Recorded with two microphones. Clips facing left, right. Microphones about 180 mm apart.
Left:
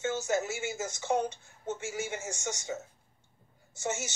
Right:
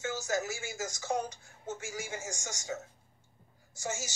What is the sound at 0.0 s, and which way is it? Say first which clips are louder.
Speech: left 3 dB; 25° left (ahead or behind).